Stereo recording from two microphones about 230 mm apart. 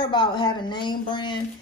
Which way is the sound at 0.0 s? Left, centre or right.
Centre.